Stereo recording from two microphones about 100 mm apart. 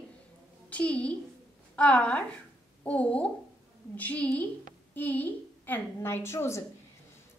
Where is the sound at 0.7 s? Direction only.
15° left (ahead or behind).